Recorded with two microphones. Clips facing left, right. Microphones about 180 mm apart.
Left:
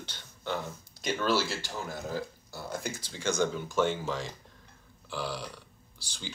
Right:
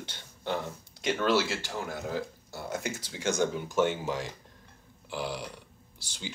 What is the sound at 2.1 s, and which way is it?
Speech, 20° right (ahead or behind).